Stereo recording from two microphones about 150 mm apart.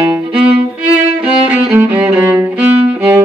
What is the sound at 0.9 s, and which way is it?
Music, 5° right (ahead or behind).